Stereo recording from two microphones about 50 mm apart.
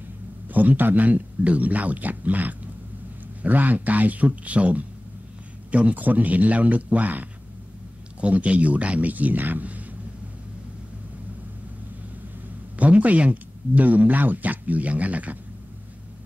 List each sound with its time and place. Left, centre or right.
0.5 s speech: right
12.7 s speech: right